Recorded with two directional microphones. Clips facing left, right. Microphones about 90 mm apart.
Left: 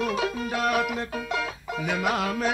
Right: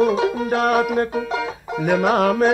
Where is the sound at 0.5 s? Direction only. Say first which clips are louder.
Right 8 dB; 50° right (ahead or behind).